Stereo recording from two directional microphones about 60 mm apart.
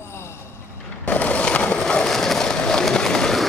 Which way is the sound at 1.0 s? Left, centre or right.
Left.